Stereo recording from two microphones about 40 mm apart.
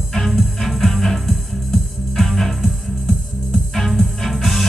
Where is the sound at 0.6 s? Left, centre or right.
Centre.